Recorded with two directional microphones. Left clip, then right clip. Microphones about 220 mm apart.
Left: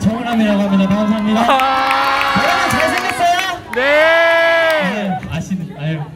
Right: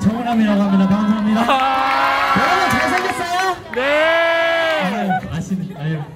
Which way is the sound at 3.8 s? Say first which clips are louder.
Left 4 dB; centre (ahead or behind).